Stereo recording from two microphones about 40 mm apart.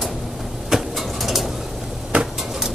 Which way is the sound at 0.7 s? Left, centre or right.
Centre.